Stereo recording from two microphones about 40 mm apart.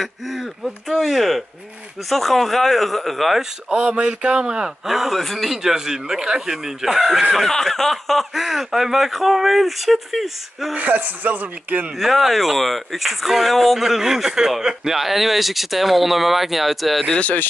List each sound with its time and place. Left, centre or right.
0.0 s speech: centre
3.7 s a man's voice: right
4.8 s speech: centre
5.1 s speech: centre
5.5 s speech: centre
7.4 s speech: centre
10.8 s speech: right
12.0 s speech: centre